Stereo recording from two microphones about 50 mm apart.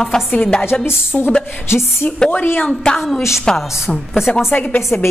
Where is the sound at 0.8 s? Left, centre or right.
Left.